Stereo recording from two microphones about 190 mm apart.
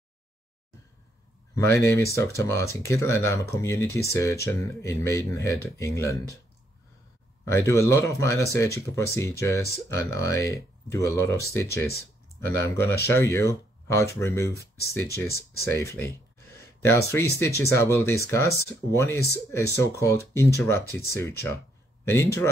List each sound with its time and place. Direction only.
1.5 s speech: 15° left (ahead or behind)
7.4 s speech: 15° left (ahead or behind)